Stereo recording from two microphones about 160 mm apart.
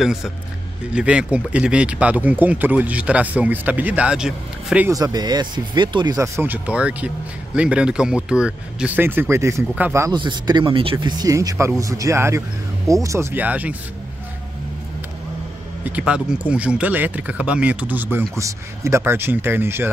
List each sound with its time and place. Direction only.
0.0 s speech: 5° right (ahead or behind)
4.9 s speech: 25° right (ahead or behind)
10.1 s speech: 30° right (ahead or behind); by 13.7 s 10° right (ahead or behind)
15.8 s speech: 10° right (ahead or behind)